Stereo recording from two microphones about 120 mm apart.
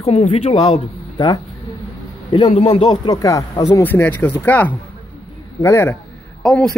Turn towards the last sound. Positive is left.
turn(degrees=5)  # may be behind; listen again after turning